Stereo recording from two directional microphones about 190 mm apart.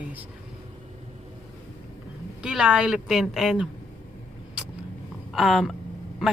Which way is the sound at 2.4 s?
5° right (ahead or behind).